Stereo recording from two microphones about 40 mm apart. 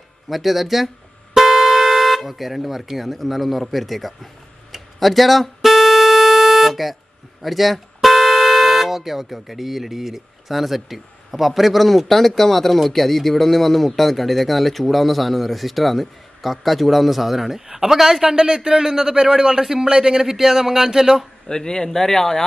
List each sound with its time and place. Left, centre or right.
0.3 s speech: centre
4.7 s a sound: centre
7.4 s speech: centre
21.5 s speech: centre